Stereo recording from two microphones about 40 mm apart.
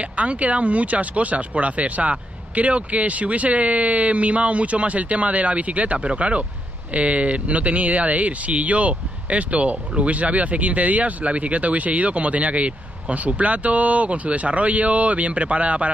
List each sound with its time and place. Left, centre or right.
0.0 s speech: right